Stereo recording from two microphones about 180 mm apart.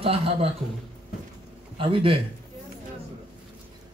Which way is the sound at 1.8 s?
30° right (ahead or behind).